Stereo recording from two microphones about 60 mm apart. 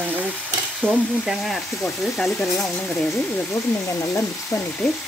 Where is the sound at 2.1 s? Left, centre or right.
Centre.